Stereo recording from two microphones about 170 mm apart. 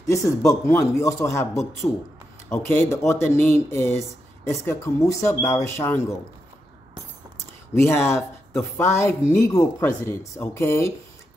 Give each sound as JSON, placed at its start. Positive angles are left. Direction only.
{"t": 0.0, "sound": "a man's voice", "side_deg": 15}
{"t": 7.7, "sound": "a man's voice", "side_deg": 15}